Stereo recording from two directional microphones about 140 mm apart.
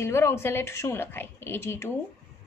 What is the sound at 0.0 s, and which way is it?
A woman's voice, 20° left (ahead or behind).